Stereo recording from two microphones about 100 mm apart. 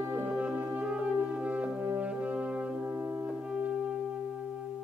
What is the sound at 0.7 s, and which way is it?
Brass instrument, 15° right (ahead or behind).